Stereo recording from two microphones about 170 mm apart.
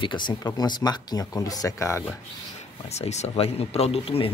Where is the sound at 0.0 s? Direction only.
25° left (ahead or behind).